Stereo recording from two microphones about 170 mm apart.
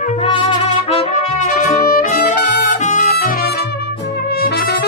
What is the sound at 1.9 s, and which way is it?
Music, 60° left (ahead or behind).